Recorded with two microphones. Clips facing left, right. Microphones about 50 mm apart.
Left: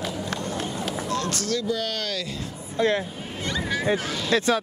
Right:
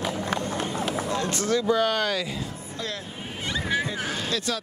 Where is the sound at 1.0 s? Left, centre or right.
Right.